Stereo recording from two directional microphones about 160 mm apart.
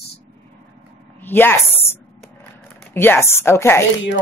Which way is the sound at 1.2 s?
15° left (ahead or behind).